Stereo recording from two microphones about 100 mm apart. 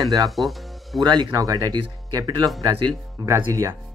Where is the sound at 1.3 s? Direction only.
35° right (ahead or behind).